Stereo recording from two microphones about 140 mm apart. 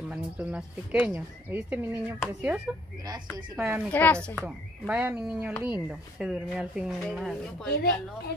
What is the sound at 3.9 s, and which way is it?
Speech, 10° left (ahead or behind).